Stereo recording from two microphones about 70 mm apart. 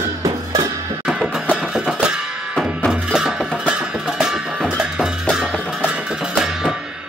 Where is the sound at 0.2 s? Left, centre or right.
Right.